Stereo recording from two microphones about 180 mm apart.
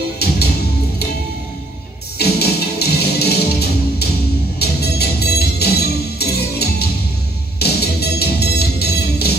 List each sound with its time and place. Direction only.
0.2 s music: 60° left (ahead or behind)
2.1 s music: 65° left (ahead or behind)